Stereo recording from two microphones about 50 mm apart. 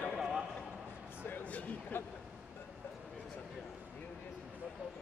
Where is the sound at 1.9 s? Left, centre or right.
Left.